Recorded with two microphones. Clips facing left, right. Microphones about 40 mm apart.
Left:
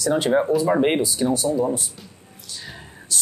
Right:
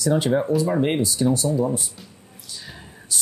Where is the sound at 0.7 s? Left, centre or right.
Left.